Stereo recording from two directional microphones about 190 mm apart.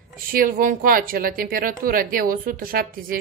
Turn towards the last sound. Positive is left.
turn(degrees=-50)  # may be behind; listen again after turning